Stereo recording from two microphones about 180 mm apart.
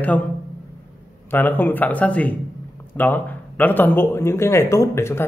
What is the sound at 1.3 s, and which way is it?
Speech, 10° left (ahead or behind).